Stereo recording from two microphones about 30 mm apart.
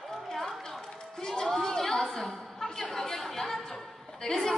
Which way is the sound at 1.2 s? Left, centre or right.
Centre.